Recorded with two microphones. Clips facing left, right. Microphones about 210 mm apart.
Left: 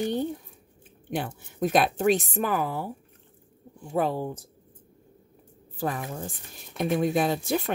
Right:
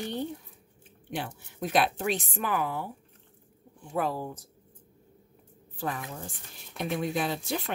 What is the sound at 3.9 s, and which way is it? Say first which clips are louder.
Speech: left 4 dB; 30° left (ahead or behind).